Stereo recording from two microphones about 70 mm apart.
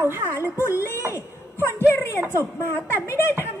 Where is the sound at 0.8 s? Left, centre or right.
Left.